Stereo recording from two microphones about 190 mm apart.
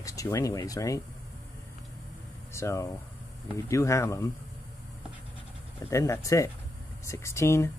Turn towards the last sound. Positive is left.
turn(degrees=15)  # may be behind; listen again after turning